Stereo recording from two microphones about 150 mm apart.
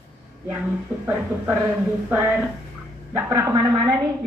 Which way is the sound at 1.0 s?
15° right (ahead or behind).